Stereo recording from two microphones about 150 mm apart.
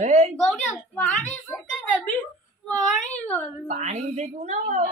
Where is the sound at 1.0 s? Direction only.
10° left (ahead or behind).